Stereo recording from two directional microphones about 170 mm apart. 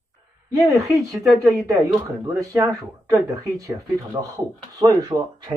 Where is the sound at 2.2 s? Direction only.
20° right (ahead or behind).